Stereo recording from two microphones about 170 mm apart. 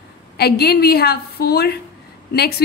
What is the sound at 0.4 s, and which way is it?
A woman's voice, 70° left (ahead or behind).